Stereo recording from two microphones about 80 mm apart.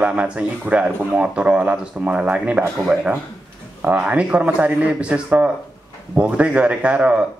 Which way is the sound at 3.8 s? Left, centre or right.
Centre.